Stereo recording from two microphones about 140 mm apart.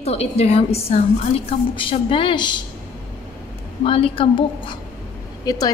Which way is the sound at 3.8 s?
40° left (ahead or behind).